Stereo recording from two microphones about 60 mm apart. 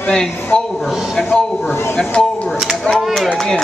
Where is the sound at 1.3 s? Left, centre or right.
Centre.